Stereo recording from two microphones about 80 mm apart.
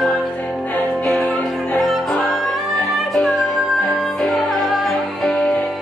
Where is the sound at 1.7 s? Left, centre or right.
Centre.